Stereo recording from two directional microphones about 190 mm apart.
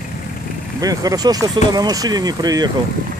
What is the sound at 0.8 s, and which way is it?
Speech, 20° right (ahead or behind).